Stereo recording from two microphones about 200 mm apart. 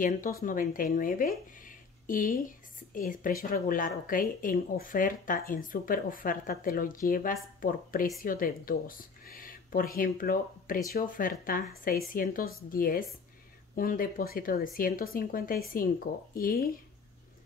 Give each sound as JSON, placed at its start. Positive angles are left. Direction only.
{"t": 0.4, "sound": "speech", "side_deg": 45}